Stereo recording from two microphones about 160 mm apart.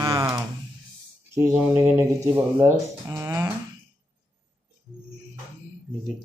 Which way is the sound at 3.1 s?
15° right (ahead or behind).